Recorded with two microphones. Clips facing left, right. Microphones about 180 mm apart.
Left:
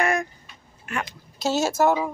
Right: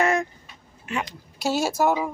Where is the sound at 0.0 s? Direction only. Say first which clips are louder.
Right 2 dB; 25° right (ahead or behind).